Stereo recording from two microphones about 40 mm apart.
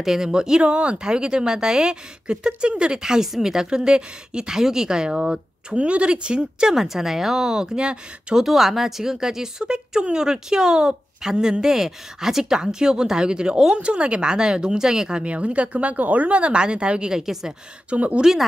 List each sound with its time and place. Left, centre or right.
0.0 s speech: centre
5.8 s speech: right
6.7 s speech: centre
8.5 s speech: centre; by 17.1 s right
17.1 s speech: centre
17.8 s speech: right